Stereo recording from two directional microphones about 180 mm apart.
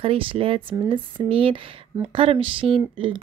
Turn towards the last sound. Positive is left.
turn(degrees=-30)  # may be behind; listen again after turning